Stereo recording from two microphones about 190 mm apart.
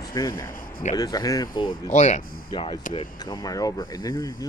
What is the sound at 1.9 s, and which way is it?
Speech, 40° left (ahead or behind).